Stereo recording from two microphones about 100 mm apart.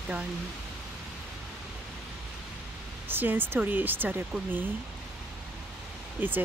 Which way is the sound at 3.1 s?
20° right (ahead or behind).